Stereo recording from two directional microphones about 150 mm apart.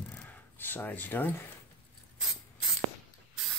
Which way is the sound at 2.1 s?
5° right (ahead or behind).